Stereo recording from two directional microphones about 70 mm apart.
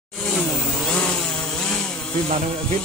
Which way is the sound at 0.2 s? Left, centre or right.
Centre.